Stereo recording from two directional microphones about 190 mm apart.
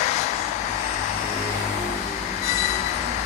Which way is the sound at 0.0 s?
35° left (ahead or behind).